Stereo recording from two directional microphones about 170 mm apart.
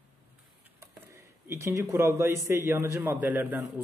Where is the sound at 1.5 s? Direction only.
15° right (ahead or behind).